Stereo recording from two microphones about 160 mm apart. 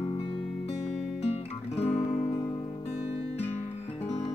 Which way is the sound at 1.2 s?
40° left (ahead or behind).